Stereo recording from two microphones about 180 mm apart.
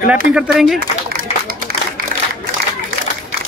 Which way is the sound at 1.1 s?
55° right (ahead or behind).